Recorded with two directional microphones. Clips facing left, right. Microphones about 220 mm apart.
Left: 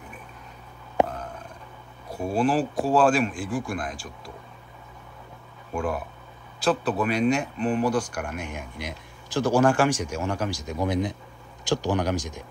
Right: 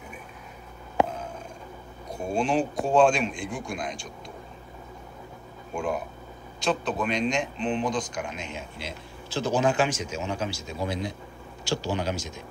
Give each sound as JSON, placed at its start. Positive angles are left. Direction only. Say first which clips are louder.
{"t": 2.0, "sound": "speech", "louder": "left 3 dB", "side_deg": 5}
{"t": 6.6, "sound": "speech", "louder": "left 3 dB", "side_deg": 5}